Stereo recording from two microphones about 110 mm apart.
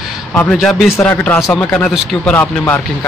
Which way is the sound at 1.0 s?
15° left (ahead or behind).